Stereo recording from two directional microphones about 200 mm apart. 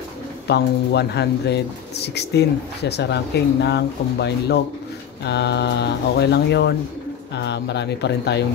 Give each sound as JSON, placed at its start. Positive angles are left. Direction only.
{"t": 0.5, "sound": "speech", "side_deg": 55}